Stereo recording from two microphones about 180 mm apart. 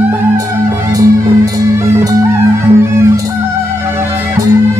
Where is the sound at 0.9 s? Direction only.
20° right (ahead or behind).